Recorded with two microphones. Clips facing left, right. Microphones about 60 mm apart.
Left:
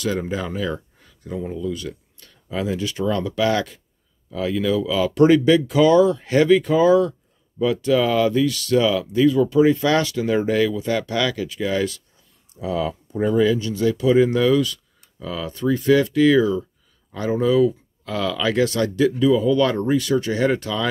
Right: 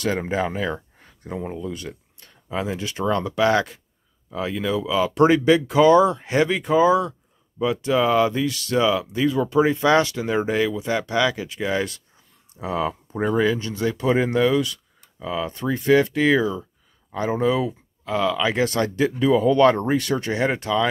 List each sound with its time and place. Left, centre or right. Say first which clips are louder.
0.0 s speech: right 1 dB; right